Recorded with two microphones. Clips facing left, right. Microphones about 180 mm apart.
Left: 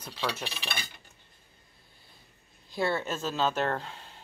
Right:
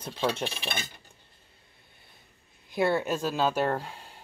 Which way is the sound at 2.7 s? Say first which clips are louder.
Right 4 dB; 15° right (ahead or behind).